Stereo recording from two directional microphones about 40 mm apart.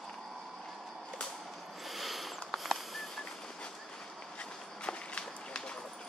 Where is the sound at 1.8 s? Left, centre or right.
Centre.